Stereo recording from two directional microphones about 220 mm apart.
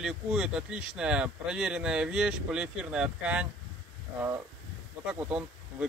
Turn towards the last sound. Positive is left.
turn(degrees=-5)  # may be behind; listen again after turning